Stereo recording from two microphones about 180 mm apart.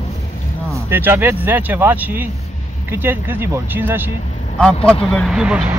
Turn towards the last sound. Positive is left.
turn(degrees=-5)  # may be behind; listen again after turning